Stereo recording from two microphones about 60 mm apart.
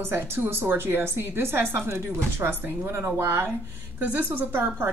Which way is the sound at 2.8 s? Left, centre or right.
Right.